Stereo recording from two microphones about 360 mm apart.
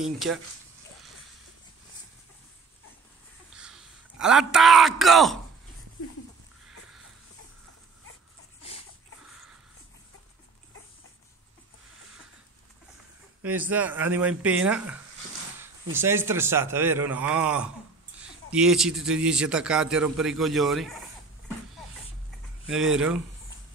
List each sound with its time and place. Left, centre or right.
0.0 s a man's voice: centre
3.5 s a man's voice: centre
13.4 s a man's voice: centre
22.7 s a man's voice: centre